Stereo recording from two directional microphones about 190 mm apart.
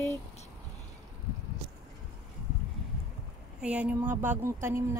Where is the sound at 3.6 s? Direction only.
5° right (ahead or behind).